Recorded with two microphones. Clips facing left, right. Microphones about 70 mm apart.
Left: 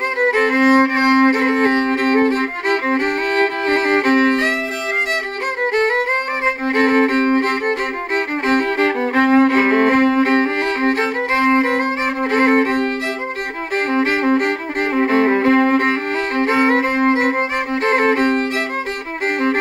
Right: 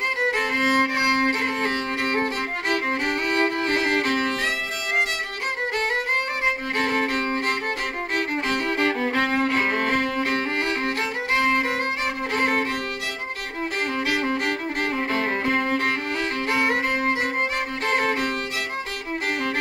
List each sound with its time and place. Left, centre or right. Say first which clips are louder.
0.2 s music: left 10 dB; left
5.7 s music: left 9 dB; left
13.9 s music: left 10 dB; left